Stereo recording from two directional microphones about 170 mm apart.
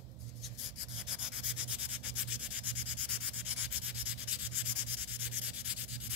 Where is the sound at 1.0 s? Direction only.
5° right (ahead or behind).